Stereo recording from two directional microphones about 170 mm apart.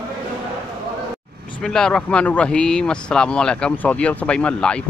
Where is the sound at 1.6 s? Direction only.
5° left (ahead or behind).